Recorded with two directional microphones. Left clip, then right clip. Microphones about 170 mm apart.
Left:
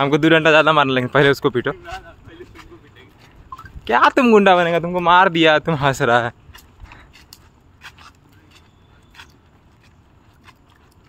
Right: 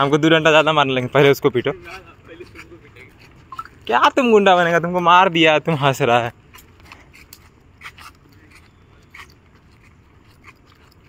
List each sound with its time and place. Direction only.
0.0 s a man's voice: 20° left (ahead or behind)
3.8 s speech: 25° left (ahead or behind)
4.6 s a man's voice: 15° left (ahead or behind)
6.9 s mechanisms: 85° right